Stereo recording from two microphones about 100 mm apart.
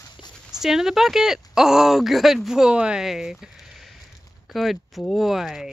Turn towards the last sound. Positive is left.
turn(degrees=-5)  # may be behind; listen again after turning